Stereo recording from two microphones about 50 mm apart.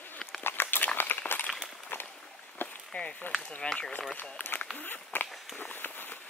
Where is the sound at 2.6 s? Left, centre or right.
Left.